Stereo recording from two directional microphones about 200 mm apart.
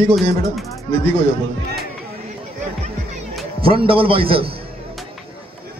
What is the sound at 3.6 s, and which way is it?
Speech, 25° right (ahead or behind).